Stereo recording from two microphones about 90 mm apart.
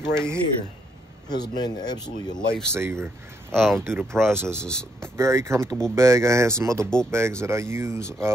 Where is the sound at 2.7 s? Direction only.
30° right (ahead or behind).